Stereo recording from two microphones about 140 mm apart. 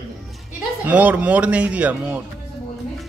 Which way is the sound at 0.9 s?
10° right (ahead or behind).